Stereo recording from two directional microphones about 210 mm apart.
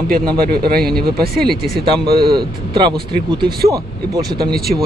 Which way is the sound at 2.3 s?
20° right (ahead or behind).